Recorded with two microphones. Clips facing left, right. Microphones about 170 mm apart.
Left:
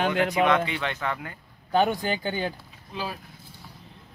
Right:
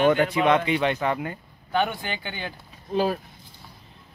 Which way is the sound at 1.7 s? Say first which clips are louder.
Left 3 dB; 40° left (ahead or behind).